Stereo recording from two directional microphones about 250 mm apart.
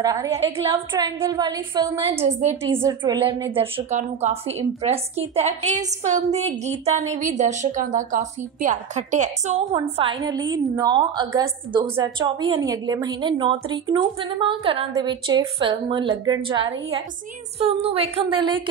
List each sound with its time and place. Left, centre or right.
0.0 s a woman's voice: centre
2.6 s a woman's voice: centre